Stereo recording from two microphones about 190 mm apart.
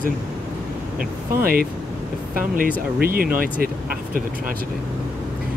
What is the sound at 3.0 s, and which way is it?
Speech, 50° right (ahead or behind).